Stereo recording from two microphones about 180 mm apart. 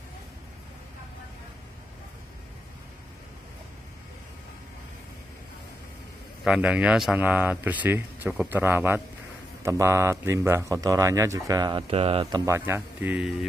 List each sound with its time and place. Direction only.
6.4 s speech: 5° right (ahead or behind)